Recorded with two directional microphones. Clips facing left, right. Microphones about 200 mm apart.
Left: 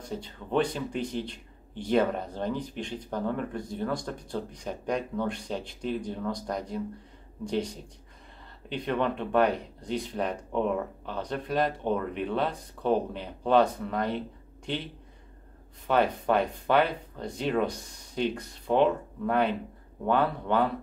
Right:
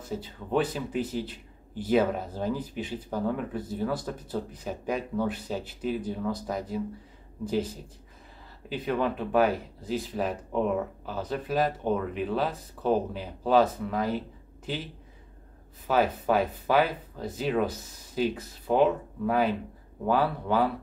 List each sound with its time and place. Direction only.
0.0 s speech: 5° right (ahead or behind)
15.9 s speech: 5° right (ahead or behind)